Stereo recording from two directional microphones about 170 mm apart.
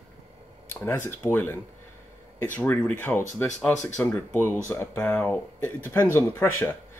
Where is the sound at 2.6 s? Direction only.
5° left (ahead or behind).